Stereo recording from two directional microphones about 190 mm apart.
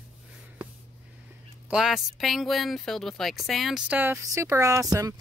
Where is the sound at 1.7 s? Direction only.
Centre (ahead or behind).